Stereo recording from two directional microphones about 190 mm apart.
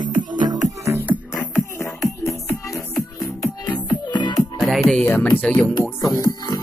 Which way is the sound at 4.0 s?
25° left (ahead or behind).